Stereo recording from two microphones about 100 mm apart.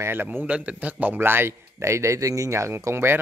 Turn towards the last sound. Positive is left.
turn(degrees=-25)  # may be behind; listen again after turning